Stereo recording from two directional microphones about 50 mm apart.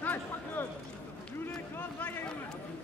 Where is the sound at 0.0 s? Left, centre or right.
Left.